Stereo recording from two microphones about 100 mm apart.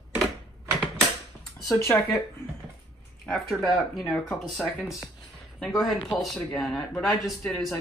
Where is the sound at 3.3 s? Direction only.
Centre (ahead or behind).